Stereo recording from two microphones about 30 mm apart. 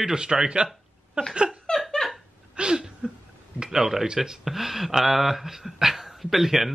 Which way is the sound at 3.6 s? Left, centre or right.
Centre.